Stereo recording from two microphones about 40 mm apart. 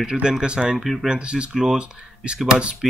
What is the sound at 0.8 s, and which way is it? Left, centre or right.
Speech, centre.